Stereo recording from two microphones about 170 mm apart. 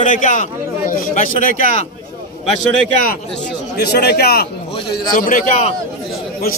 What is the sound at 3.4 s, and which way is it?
A man's voice, 75° left (ahead or behind).